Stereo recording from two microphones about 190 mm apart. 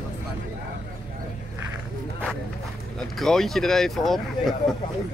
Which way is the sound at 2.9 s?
Centre (ahead or behind).